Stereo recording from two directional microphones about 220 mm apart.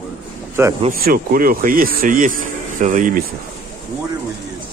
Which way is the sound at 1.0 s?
40° right (ahead or behind).